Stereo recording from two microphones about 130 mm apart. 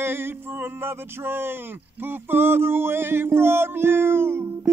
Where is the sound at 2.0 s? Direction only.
15° right (ahead or behind).